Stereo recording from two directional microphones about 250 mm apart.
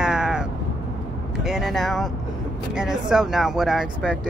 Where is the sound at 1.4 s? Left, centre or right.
Centre.